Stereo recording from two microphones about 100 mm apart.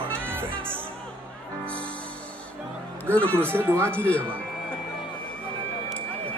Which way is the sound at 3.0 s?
15° left (ahead or behind).